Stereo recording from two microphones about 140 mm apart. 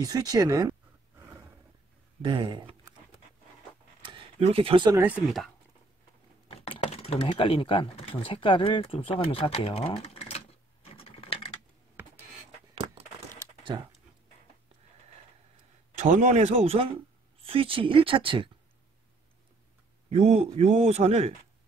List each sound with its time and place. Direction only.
0.0 s speech: 25° right (ahead or behind)
2.2 s speech: 35° right (ahead or behind)
4.4 s a man's voice: 45° right (ahead or behind)
4.9 s speech: 15° right (ahead or behind)
6.5 s speech: 45° left (ahead or behind)
11.0 s typing: 40° left (ahead or behind)
12.0 s a sound: 15° right (ahead or behind)
12.7 s keys jangling: 45° right (ahead or behind)
16.0 s a man's voice: 55° right (ahead or behind); by 18.5 s 35° right (ahead or behind)
20.1 s a man's voice: 50° right (ahead or behind)